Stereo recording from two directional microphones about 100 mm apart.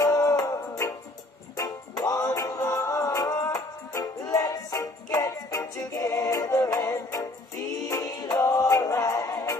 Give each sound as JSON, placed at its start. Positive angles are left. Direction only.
{"t": 0.0, "sound": "music", "side_deg": 35}